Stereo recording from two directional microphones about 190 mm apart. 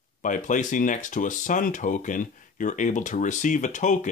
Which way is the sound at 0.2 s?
40° left (ahead or behind).